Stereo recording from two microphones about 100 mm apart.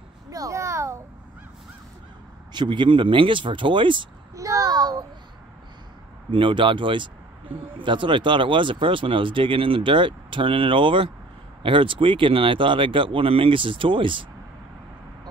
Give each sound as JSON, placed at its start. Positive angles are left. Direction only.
{"t": 0.3, "sound": "a sound", "side_deg": -35}
{"t": 2.5, "sound": "speech", "side_deg": -50}
{"t": 4.4, "sound": "a child's voice", "side_deg": -35}
{"t": 6.3, "sound": "speech", "side_deg": -60}